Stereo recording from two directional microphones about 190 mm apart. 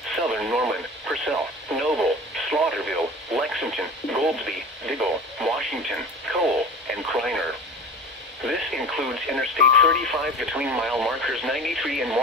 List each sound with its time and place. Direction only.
0.1 s radio: centre (ahead or behind)
8.5 s radio: centre (ahead or behind)